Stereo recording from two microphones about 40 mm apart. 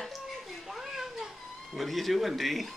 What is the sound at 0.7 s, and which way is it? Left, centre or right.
Cat, centre.